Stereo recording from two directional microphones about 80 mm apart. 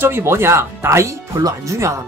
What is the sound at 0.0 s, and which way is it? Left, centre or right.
Speech, right.